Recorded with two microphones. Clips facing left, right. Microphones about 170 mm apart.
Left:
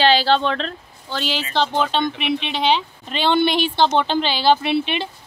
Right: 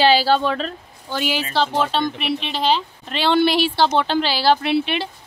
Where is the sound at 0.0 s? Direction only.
10° right (ahead or behind).